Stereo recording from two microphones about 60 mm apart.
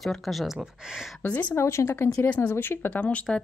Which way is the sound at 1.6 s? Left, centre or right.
Left.